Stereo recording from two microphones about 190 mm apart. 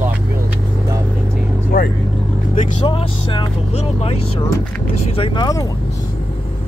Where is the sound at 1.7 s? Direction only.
60° left (ahead or behind).